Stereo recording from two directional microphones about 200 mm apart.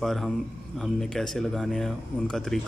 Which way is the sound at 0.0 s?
Centre (ahead or behind).